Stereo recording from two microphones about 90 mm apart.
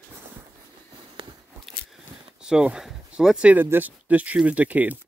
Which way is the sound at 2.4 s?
10° right (ahead or behind).